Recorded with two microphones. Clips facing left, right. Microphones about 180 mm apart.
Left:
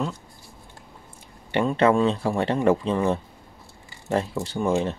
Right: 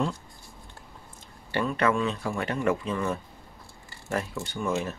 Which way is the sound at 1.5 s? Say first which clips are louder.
Left 6 dB; 25° left (ahead or behind).